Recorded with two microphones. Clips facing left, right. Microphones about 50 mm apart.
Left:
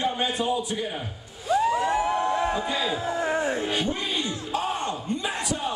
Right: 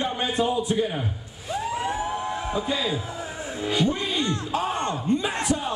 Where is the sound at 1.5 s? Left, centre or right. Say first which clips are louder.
Left 5 dB; left.